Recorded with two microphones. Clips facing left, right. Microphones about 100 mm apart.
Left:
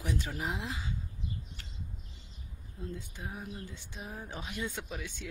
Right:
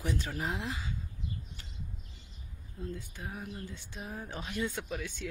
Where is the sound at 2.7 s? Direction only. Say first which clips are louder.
Right 1 dB; 20° left (ahead or behind).